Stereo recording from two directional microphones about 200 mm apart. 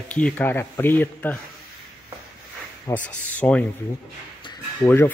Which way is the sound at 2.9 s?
5° left (ahead or behind).